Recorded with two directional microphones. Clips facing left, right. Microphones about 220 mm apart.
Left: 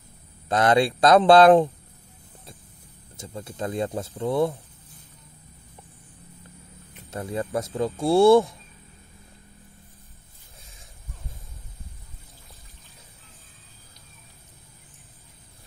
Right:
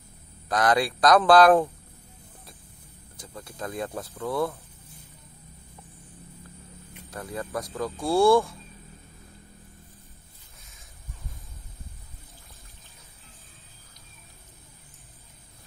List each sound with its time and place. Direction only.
0.5 s speech: 25° left (ahead or behind)
3.2 s speech: 25° left (ahead or behind)
7.1 s speech: 25° left (ahead or behind)